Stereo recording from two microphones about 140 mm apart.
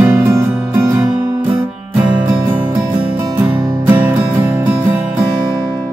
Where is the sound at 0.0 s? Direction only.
15° right (ahead or behind).